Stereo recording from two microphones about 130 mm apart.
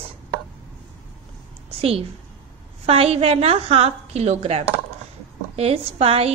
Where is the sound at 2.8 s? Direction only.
50° right (ahead or behind).